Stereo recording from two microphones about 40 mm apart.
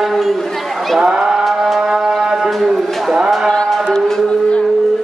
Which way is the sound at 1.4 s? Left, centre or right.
Centre.